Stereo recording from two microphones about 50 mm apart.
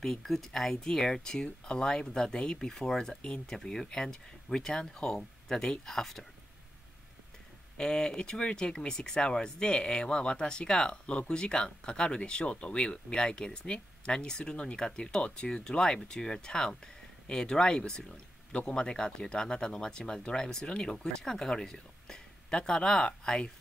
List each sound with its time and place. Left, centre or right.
0.0 s speech: centre
7.7 s speech: centre